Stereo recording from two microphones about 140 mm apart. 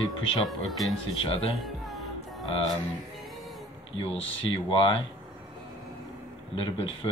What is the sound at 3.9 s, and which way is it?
Speech, 40° left (ahead or behind).